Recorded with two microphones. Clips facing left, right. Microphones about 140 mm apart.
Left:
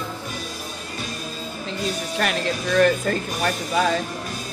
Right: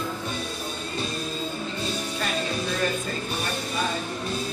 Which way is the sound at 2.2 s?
70° left (ahead or behind).